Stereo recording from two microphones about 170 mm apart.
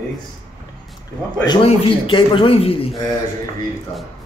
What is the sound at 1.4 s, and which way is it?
A man's voice, 30° left (ahead or behind).